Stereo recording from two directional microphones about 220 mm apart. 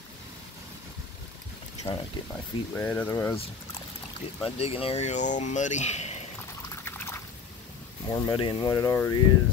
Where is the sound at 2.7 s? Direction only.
5° left (ahead or behind).